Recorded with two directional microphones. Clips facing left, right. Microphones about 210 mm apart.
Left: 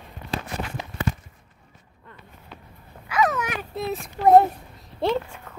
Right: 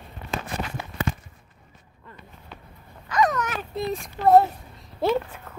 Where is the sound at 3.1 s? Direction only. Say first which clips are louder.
Even; 5° left (ahead or behind).